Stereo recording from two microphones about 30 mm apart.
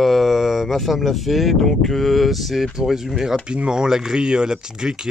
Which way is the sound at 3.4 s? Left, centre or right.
Right.